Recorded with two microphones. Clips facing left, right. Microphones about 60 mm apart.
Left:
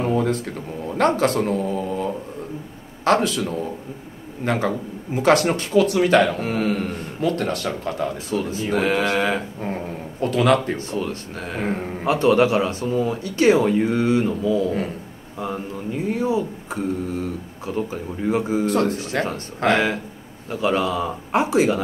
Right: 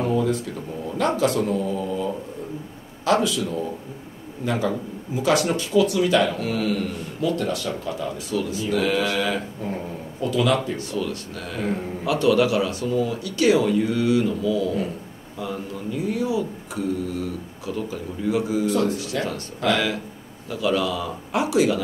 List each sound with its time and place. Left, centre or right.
0.0 s a man's voice: left
10.2 s a man's voice: left
10.8 s speech: left